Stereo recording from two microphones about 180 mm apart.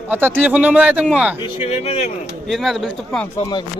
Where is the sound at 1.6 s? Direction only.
35° left (ahead or behind).